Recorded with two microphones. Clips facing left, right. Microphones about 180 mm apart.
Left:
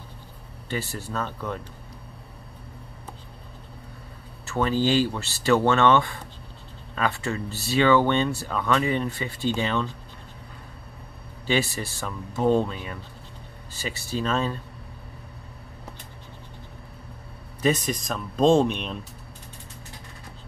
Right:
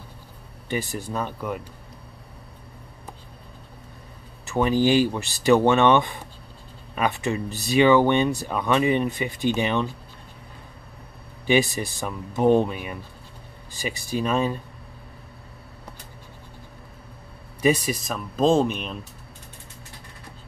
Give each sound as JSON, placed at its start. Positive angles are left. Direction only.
{"t": 0.7, "sound": "speech", "side_deg": -15}
{"t": 4.5, "sound": "speech", "side_deg": -15}
{"t": 11.4, "sound": "speech", "side_deg": -15}
{"t": 17.6, "sound": "speech", "side_deg": -10}